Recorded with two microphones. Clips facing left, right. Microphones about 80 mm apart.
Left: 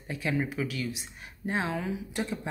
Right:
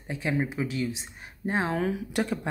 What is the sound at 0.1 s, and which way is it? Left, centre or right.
Speech, right.